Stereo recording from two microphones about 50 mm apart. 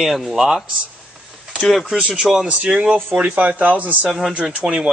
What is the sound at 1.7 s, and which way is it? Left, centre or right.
Speech, centre.